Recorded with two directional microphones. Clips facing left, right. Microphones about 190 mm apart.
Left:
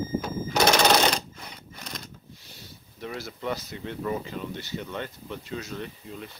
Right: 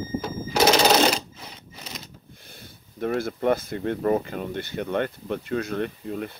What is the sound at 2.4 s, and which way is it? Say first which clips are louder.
Speech: right 2 dB; 55° right (ahead or behind).